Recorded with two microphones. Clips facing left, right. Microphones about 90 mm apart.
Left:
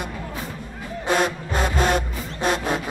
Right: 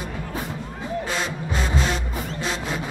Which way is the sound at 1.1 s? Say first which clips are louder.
Left 5 dB; 50° left (ahead or behind).